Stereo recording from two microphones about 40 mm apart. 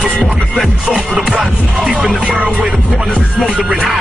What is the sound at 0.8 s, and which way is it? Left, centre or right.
Music, right.